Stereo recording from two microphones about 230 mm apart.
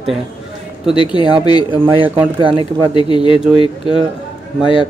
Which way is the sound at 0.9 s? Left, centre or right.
Left.